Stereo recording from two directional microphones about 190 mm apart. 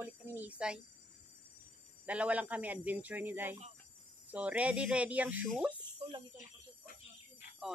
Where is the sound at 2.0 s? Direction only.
5° right (ahead or behind).